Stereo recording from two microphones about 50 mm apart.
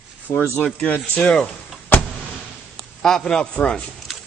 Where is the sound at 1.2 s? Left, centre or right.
Centre.